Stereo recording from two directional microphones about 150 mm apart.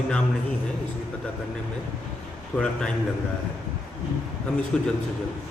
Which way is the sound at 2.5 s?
5° left (ahead or behind).